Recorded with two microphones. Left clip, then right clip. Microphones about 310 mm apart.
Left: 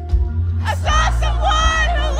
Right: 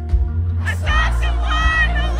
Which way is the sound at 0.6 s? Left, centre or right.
Centre.